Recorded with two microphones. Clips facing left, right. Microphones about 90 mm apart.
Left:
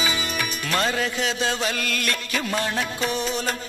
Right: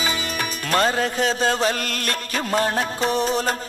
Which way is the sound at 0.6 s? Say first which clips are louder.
Right 4 dB; 40° right (ahead or behind).